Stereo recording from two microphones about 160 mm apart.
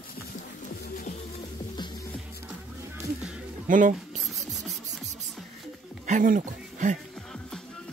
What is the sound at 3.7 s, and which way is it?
Speech, 55° right (ahead or behind).